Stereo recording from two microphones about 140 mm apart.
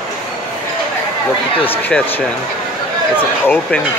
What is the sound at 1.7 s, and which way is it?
Speech, 10° left (ahead or behind).